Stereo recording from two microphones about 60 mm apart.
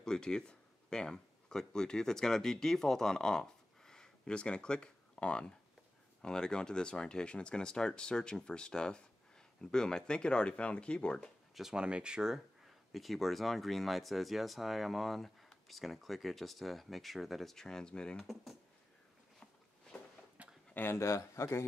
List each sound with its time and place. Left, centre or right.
0.0 s speech: centre
11.1 s speech: centre
11.7 s speech: centre
12.9 s speech: centre
18.2 s speech: centre
20.4 s a sound: right
20.7 s speech: left
21.0 s a man's voice: left